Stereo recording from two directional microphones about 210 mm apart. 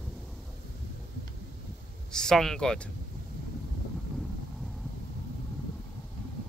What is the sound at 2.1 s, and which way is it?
Speech, 5° left (ahead or behind).